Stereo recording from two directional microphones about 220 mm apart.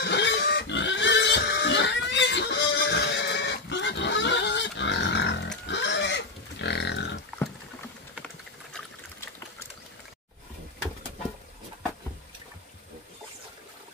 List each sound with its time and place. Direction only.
0.0 s pig: 50° left (ahead or behind)
5.7 s livestock: 55° left (ahead or behind)